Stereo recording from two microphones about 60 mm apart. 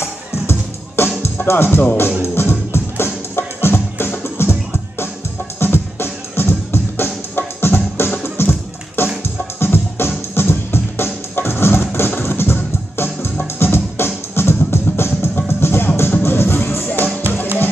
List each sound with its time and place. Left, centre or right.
0.0 s music: left